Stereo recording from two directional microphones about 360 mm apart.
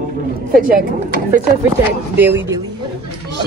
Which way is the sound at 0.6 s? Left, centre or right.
Right.